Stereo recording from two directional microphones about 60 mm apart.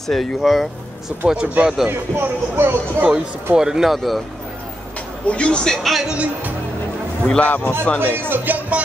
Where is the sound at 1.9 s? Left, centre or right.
Right.